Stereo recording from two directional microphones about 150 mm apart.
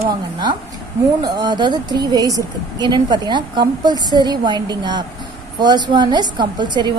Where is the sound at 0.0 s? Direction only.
30° right (ahead or behind).